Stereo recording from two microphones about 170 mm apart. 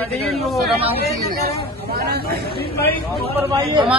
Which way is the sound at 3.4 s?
15° right (ahead or behind).